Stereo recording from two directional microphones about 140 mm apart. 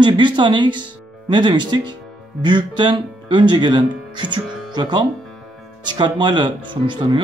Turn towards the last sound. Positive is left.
turn(degrees=-35)  # may be behind; listen again after turning